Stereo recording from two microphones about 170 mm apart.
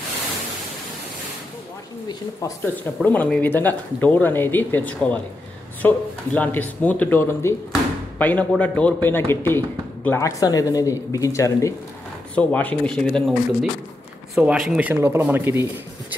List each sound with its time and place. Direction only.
2.0 s speech: 15° left (ahead or behind); by 15.7 s 15° right (ahead or behind)